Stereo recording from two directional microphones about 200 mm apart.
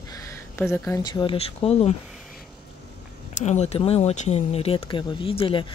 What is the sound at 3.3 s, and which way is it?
Speech, 35° left (ahead or behind).